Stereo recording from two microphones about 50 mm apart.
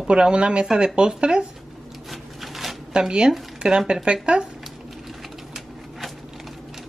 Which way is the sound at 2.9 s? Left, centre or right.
Centre.